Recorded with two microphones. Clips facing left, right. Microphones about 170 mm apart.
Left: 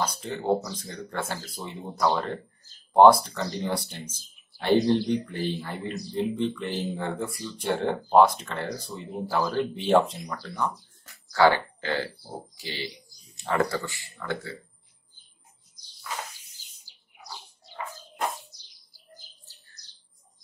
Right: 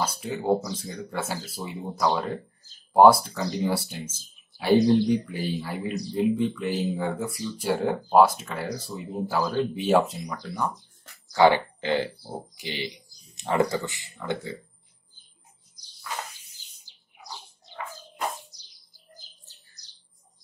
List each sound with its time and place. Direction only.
0.0 s speech: 5° right (ahead or behind)